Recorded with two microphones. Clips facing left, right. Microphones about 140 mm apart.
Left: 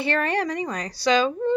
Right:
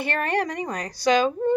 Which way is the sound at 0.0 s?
50° right (ahead or behind).